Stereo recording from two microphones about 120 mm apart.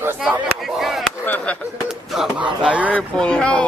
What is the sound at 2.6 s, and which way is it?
Speech, 10° right (ahead or behind).